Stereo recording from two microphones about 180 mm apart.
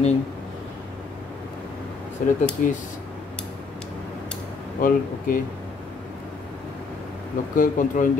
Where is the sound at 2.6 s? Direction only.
45° left (ahead or behind).